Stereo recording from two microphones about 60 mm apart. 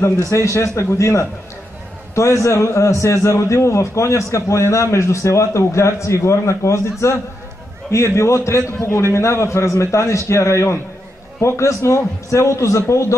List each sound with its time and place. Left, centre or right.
0.3 s a man's voice: left